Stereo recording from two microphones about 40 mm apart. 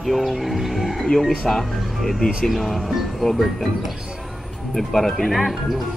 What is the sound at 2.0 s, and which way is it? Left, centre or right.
Speech, centre.